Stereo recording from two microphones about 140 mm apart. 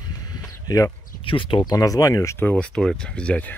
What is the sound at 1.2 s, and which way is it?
Speech, 40° left (ahead or behind).